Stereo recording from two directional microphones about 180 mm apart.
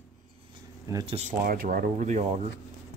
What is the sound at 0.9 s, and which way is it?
Speech, 20° right (ahead or behind).